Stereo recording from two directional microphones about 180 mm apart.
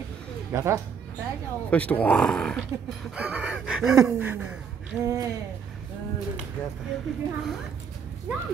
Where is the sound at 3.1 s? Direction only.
5° right (ahead or behind).